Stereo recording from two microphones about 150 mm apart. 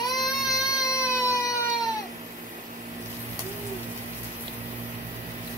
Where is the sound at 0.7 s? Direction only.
20° left (ahead or behind).